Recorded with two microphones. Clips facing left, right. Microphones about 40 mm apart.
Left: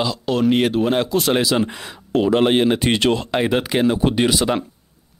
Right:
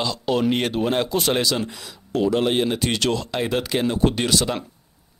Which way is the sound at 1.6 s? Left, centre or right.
Left.